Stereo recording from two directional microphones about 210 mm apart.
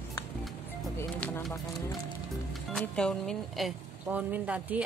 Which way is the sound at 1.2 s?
10° left (ahead or behind).